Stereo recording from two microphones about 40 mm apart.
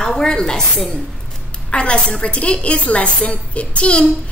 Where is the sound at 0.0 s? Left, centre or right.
Centre.